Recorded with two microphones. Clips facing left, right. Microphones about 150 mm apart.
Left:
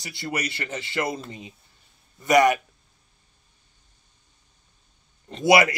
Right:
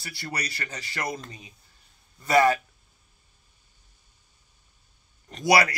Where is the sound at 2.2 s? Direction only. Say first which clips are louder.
Left 2 dB; 20° left (ahead or behind).